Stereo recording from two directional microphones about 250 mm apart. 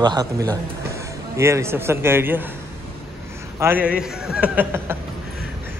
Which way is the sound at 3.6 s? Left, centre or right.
Centre.